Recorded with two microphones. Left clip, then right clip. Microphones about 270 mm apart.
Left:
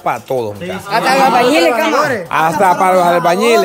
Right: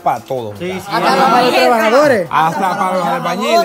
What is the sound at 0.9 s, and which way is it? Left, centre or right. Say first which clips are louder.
Speech: left 1 dB; left.